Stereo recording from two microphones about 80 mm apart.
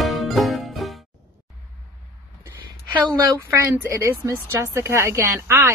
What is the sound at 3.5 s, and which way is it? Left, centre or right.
A woman's voice, right.